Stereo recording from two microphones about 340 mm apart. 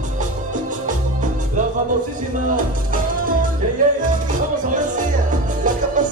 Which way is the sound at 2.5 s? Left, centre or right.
Right.